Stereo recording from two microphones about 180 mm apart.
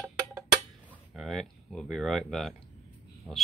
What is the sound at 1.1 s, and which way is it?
Speech, centre (ahead or behind).